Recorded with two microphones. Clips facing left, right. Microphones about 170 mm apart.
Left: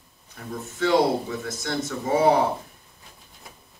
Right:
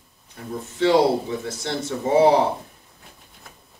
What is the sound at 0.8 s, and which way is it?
Speech, 30° right (ahead or behind).